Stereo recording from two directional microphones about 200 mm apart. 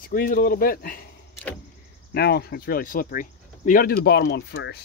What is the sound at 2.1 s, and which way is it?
Speech, 55° left (ahead or behind).